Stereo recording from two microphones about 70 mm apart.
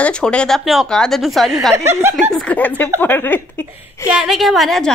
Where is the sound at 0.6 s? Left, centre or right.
Centre.